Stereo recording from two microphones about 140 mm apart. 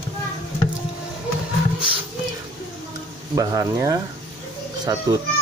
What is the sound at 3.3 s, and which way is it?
Speech, 25° right (ahead or behind).